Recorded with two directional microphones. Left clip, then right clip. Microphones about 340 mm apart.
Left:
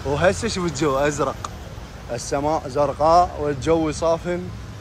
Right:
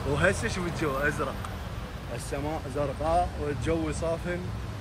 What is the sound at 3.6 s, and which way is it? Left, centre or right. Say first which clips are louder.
Speech: left 11 dB; centre.